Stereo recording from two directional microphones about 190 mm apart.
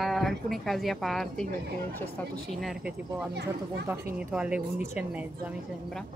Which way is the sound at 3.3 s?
60° right (ahead or behind).